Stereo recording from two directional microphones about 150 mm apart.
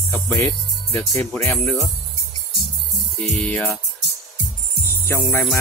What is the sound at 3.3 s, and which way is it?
Music, 10° left (ahead or behind).